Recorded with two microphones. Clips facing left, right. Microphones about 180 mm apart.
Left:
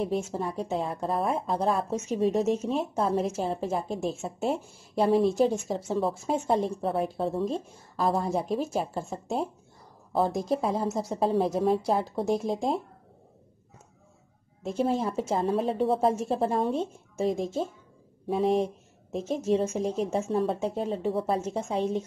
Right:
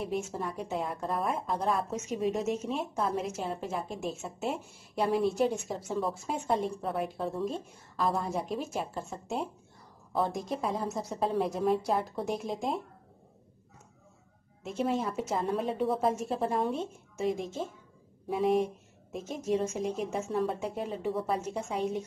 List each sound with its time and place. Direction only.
0.0 s a woman's voice: 30° left (ahead or behind)
14.9 s a woman's voice: 30° left (ahead or behind)
19.4 s a woman's voice: 30° left (ahead or behind)